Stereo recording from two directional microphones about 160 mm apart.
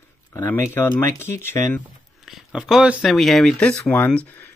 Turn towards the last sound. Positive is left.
turn(degrees=10)  # may be behind; listen again after turning